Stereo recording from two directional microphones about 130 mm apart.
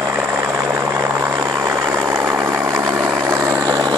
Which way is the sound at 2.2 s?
25° right (ahead or behind).